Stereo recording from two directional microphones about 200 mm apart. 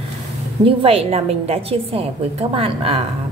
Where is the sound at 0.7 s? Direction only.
30° right (ahead or behind).